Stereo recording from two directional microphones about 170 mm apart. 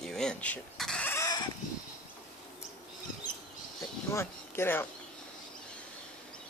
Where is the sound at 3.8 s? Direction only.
15° left (ahead or behind).